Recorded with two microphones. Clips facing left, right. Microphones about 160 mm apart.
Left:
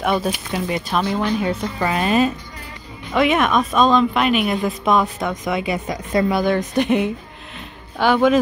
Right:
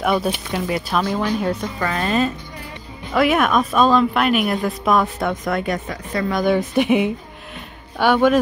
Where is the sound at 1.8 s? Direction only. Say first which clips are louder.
Left 4 dB; 15° left (ahead or behind).